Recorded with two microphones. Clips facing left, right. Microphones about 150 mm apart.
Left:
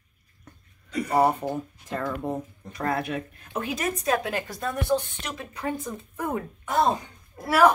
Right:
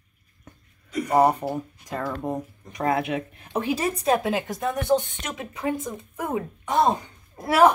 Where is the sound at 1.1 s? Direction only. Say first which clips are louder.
Right 3 dB; 15° right (ahead or behind).